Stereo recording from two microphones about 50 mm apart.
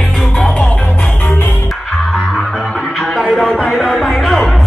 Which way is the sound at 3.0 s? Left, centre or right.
Centre.